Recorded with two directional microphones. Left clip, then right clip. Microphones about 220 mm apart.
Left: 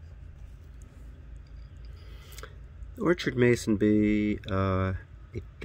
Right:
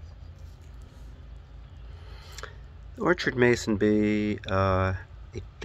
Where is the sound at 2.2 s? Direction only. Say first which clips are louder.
Right 5 dB; 40° left (ahead or behind).